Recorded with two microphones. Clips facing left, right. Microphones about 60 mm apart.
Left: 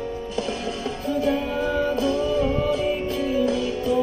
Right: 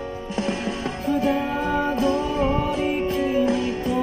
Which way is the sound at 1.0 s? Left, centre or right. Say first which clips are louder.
Right 1 dB; right.